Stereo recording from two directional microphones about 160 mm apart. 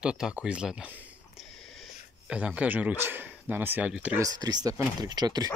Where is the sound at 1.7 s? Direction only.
Centre (ahead or behind).